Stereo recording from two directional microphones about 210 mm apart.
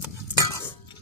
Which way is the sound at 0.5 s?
15° left (ahead or behind).